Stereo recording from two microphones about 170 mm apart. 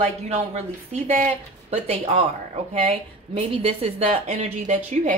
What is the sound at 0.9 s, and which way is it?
Speech, 45° right (ahead or behind).